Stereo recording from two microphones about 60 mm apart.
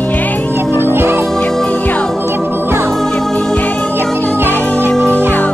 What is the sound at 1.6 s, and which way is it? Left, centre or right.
Music, left.